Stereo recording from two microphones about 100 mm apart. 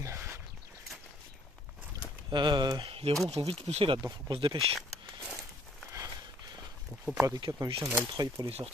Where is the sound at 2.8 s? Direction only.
70° right (ahead or behind).